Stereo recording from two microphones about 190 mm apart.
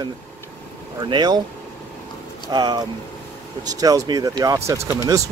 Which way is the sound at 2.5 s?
20° right (ahead or behind).